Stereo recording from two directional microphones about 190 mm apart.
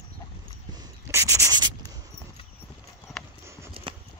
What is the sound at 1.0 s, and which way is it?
Sanding, 15° right (ahead or behind).